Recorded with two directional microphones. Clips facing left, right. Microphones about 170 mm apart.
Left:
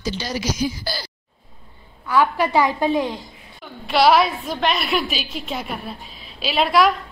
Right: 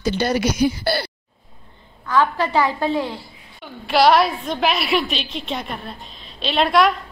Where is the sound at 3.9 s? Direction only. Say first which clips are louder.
Right 1 dB; centre (ahead or behind).